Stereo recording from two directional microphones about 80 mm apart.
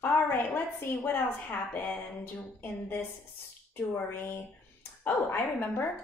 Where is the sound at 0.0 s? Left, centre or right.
Left.